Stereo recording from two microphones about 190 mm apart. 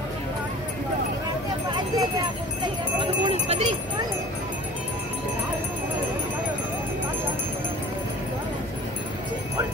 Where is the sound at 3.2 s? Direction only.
35° right (ahead or behind).